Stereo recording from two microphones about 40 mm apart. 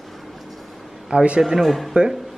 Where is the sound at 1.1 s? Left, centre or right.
Right.